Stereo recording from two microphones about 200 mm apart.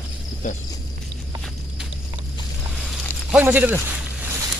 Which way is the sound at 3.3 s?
10° right (ahead or behind).